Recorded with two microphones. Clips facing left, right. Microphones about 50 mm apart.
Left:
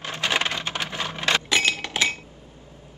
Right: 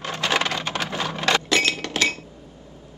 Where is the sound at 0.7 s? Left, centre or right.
Right.